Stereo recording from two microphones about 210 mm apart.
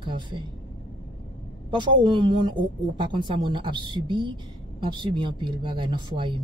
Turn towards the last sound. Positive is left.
turn(degrees=-25)  # may be behind; listen again after turning